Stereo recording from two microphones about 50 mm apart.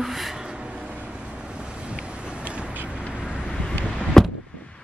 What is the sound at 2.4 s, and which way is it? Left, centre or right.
Vehicle, right.